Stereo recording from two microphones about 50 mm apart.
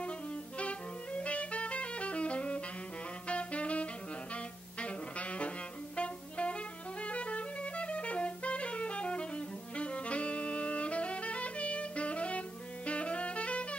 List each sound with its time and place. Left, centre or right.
0.6 s music: left
3.3 s saxophone: left
4.7 s music: left